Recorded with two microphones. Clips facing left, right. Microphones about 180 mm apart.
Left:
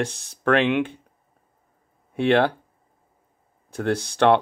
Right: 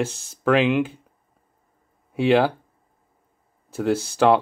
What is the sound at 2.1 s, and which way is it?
Speech, 5° right (ahead or behind).